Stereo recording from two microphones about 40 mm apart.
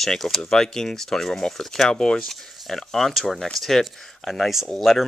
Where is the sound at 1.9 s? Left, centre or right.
Centre.